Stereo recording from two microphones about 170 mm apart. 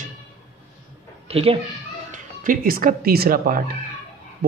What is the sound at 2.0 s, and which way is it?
Speech, 55° right (ahead or behind).